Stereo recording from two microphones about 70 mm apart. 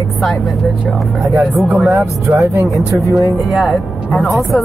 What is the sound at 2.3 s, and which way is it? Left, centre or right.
Speech, right.